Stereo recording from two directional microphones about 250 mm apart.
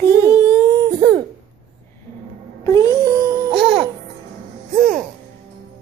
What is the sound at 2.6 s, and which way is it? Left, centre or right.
Music, centre.